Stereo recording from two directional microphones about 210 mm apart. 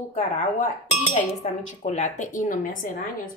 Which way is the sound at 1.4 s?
30° left (ahead or behind).